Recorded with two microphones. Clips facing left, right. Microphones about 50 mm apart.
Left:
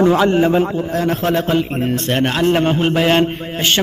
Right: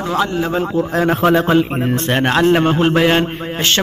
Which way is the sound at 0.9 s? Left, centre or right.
Centre.